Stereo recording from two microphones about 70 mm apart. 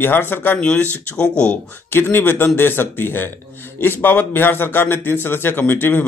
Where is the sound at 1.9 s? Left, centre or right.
Left.